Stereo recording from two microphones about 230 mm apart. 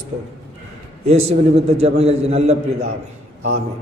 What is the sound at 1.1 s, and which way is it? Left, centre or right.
A man's voice, right.